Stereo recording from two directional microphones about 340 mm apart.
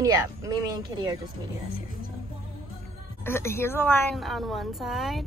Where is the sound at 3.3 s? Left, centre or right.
Centre.